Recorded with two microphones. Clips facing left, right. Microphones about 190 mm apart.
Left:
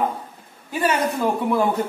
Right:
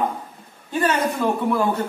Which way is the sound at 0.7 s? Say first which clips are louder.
Even; 10° left (ahead or behind).